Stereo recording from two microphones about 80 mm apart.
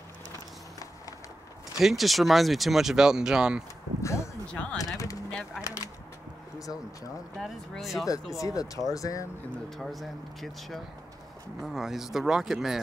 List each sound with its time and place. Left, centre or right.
1.8 s speech: centre
4.0 s speech: left
4.5 s speech: centre
4.7 s speech: left
7.3 s speech: centre
8.4 s speech: left
9.8 s speech: centre